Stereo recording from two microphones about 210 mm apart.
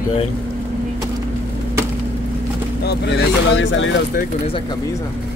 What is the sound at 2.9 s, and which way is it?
Speech, 55° left (ahead or behind).